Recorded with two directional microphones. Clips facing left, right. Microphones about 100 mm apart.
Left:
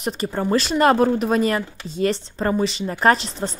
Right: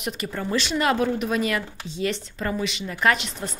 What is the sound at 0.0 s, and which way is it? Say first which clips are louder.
Speech: left 6 dB; 35° left (ahead or behind).